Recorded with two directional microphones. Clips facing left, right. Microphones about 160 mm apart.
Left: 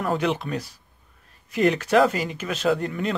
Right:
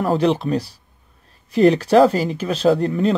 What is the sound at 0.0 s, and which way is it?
Speech, 35° right (ahead or behind).